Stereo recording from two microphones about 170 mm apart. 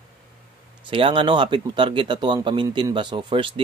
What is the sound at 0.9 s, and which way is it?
Speech, 30° right (ahead or behind).